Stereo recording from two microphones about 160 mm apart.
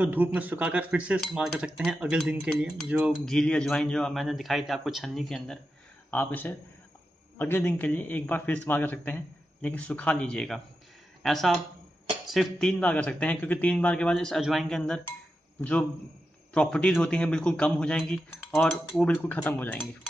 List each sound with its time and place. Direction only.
0.0 s a man's voice: 10° right (ahead or behind)
3.3 s a man's voice: 5° left (ahead or behind)